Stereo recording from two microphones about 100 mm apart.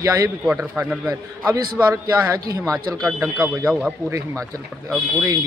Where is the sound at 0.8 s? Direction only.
10° right (ahead or behind).